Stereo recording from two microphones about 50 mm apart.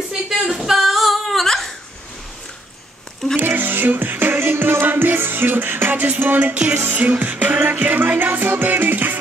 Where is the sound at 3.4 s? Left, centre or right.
Right.